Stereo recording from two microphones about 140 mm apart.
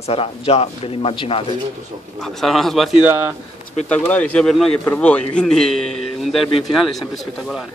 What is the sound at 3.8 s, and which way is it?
A man's voice, 10° left (ahead or behind).